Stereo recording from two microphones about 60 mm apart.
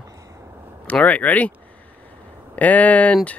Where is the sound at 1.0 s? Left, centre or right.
Left.